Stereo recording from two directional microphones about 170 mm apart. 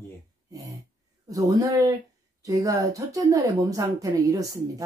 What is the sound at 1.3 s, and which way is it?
Speech, 20° right (ahead or behind).